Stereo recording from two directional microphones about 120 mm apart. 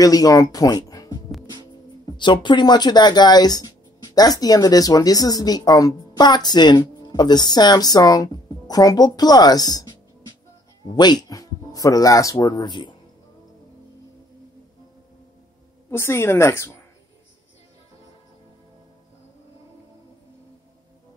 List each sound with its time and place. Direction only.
0.0 s speech: 30° left (ahead or behind)
15.9 s a woman's voice: 20° left (ahead or behind)